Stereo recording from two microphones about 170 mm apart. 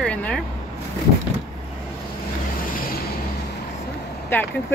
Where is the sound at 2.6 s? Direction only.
55° left (ahead or behind).